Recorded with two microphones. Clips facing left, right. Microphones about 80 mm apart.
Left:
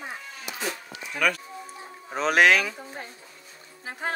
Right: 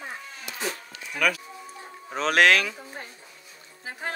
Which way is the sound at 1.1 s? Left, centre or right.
Centre.